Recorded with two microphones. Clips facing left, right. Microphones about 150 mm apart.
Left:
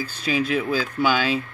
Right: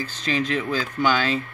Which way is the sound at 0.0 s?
10° left (ahead or behind).